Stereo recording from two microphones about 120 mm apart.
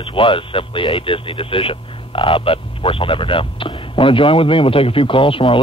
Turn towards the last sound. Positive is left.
turn(degrees=45)  # may be behind; listen again after turning